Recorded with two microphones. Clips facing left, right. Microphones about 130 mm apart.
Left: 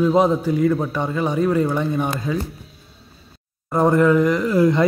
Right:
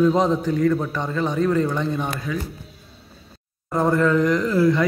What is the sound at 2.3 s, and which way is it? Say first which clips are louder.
Speech: left 3 dB; 30° left (ahead or behind).